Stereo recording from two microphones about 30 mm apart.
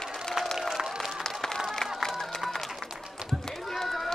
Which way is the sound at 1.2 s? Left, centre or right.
Left.